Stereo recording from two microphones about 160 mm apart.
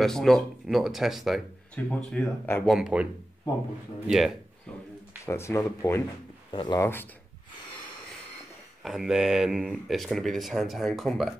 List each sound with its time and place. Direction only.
0.0 s speech: centre (ahead or behind)
2.7 s speech: 5° right (ahead or behind)
4.1 s speech: centre (ahead or behind)
5.2 s speech: 15° left (ahead or behind)
6.5 s speech: 30° left (ahead or behind)
6.8 s speech: 15° left (ahead or behind)
8.8 s speech: 5° right (ahead or behind)